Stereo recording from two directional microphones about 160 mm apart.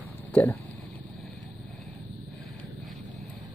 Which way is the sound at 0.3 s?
10° left (ahead or behind).